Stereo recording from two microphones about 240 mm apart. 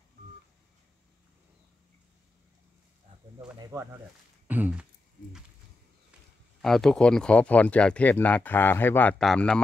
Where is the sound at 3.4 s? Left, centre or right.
Centre.